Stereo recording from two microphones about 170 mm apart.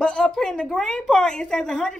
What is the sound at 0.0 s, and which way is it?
A woman's voice, 5° left (ahead or behind).